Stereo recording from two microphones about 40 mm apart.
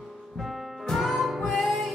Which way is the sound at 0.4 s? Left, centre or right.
Centre.